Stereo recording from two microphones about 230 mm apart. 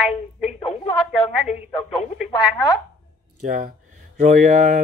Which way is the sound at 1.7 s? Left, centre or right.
Left.